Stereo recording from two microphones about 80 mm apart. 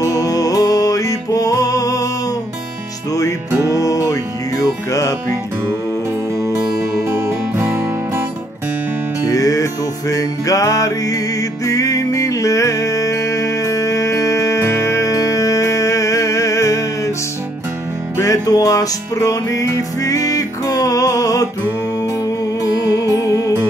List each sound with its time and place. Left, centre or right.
0.0 s music: left
3.7 s music: left
7.1 s music: right
9.3 s music: left
18.1 s music: left